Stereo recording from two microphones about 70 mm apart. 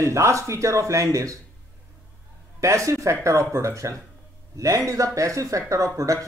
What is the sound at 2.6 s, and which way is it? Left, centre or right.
A man's voice, right.